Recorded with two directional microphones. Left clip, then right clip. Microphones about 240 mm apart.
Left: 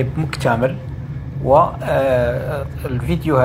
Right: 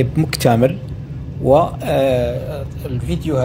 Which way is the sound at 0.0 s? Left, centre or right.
Right.